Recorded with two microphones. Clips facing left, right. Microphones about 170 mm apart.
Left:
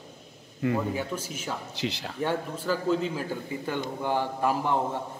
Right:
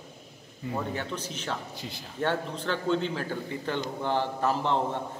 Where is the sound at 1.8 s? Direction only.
80° left.